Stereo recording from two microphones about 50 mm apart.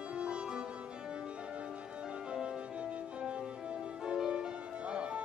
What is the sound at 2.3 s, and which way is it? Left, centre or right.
Music, centre.